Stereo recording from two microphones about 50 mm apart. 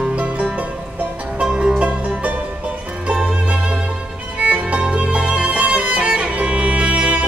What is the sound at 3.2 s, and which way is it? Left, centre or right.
Music, right.